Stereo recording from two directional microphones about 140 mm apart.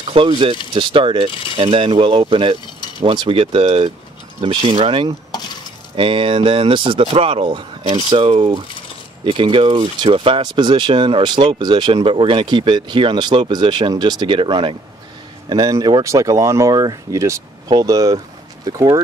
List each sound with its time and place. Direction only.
0.1 s speech: 40° right (ahead or behind)